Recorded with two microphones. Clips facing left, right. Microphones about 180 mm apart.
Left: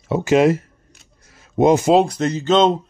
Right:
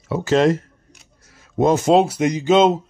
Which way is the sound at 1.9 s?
5° right (ahead or behind).